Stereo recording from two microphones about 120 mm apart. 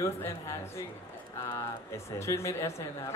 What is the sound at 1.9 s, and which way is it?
A woman's voice, 25° left (ahead or behind).